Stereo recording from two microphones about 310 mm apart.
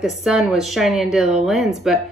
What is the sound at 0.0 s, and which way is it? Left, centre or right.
Speech, centre.